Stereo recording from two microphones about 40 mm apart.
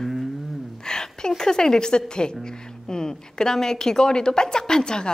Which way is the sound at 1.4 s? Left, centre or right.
Centre.